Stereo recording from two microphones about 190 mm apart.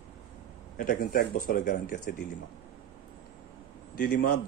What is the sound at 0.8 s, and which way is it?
Speech, 50° left (ahead or behind).